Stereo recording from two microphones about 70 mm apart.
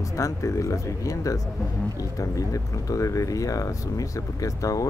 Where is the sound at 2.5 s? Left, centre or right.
Left.